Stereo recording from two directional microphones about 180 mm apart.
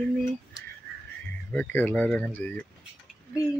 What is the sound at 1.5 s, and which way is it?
Speech, 10° left (ahead or behind).